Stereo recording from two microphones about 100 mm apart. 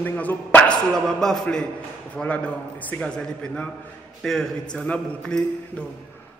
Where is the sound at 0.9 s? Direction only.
5° left (ahead or behind).